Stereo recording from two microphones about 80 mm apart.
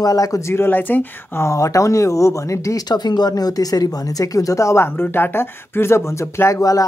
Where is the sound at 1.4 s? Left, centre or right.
Left.